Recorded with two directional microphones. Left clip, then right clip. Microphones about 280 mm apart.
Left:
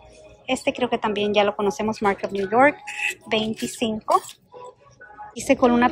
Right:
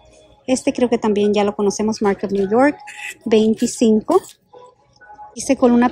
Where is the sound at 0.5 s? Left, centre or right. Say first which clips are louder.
Right 5 dB; centre.